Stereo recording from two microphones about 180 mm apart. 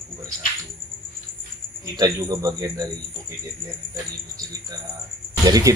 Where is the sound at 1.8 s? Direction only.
20° right (ahead or behind).